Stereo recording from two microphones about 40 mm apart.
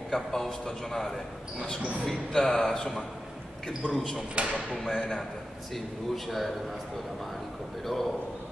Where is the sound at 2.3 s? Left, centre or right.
Centre.